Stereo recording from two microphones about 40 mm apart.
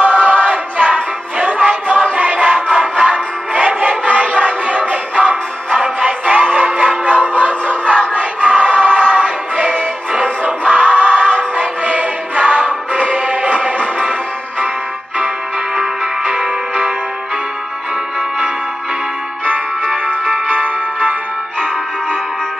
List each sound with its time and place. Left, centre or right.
0.0 s choir: right
2.1 s music: right
15.1 s music: right
20.3 s music: right